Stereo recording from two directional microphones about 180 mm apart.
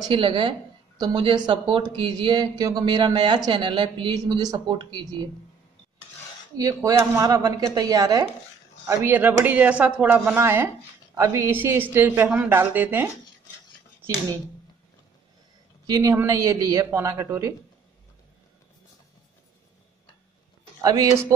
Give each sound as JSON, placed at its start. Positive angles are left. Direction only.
{"t": 0.1, "sound": "speech", "side_deg": -25}
{"t": 6.5, "sound": "speech", "side_deg": -20}
{"t": 15.9, "sound": "speech", "side_deg": -20}
{"t": 20.8, "sound": "speech", "side_deg": -20}